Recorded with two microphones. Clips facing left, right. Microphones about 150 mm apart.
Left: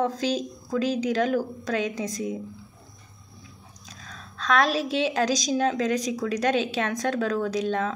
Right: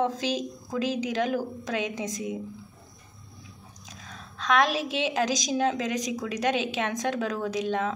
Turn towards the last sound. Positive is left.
turn(degrees=-15)  # may be behind; listen again after turning